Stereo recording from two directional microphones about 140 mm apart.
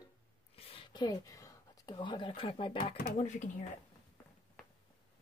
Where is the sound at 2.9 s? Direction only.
65° left (ahead or behind).